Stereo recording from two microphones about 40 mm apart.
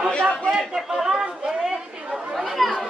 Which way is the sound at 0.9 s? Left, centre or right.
Centre.